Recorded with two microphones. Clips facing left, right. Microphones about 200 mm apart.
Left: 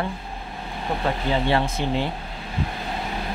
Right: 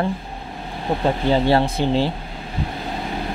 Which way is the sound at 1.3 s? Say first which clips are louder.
Right 5 dB; 35° right (ahead or behind).